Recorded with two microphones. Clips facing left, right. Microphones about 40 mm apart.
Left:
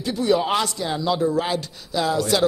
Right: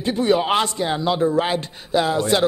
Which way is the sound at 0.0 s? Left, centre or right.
Right.